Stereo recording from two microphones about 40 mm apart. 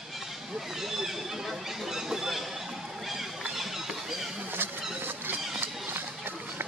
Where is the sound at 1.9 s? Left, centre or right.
Centre.